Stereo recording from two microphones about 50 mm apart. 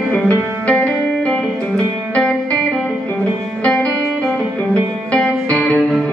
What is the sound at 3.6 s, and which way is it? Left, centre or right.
Music, left.